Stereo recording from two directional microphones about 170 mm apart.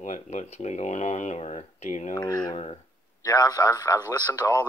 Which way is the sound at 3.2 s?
20° left (ahead or behind).